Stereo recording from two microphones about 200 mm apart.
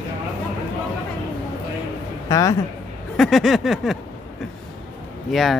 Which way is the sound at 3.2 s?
Centre (ahead or behind).